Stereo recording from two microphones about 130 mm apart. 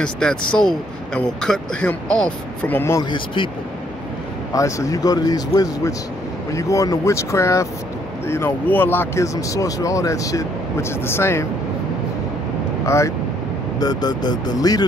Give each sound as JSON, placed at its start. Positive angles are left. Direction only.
{"t": 0.0, "sound": "speech", "side_deg": 5}
{"t": 3.0, "sound": "speech", "side_deg": 35}
{"t": 4.6, "sound": "speech", "side_deg": 25}
{"t": 12.8, "sound": "speech", "side_deg": 20}